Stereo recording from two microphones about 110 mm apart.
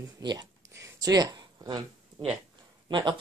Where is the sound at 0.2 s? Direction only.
40° right (ahead or behind).